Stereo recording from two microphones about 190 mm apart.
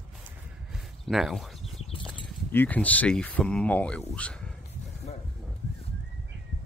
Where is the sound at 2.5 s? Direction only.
10° left (ahead or behind).